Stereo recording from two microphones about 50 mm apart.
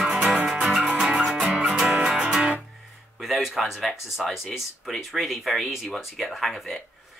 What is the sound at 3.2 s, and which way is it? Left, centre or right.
Speech, centre.